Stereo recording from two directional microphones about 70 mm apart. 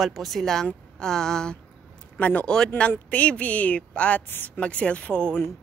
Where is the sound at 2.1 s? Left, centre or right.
Left.